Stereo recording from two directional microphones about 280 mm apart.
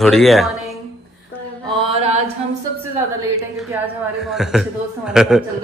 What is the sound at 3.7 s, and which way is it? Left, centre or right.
Speech, centre.